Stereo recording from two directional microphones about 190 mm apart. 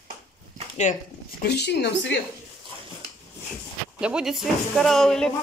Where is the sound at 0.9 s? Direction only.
40° left (ahead or behind).